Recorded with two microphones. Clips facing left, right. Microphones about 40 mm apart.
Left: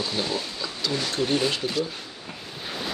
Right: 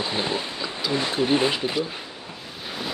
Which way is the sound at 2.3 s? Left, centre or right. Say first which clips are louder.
Left 2 dB; centre.